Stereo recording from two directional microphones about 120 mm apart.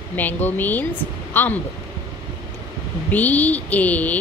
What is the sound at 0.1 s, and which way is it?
Speech, 15° left (ahead or behind).